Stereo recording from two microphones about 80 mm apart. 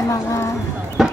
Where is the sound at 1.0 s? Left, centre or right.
Centre.